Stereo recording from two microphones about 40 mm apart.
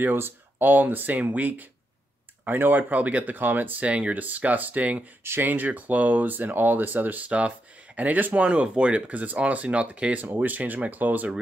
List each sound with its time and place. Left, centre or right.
0.0 s speech: right
2.9 s speech: right
3.3 s speech: right
3.8 s speech: right
4.1 s speech: right
7.2 s speech: right
8.5 s speech: right
10.3 s speech: right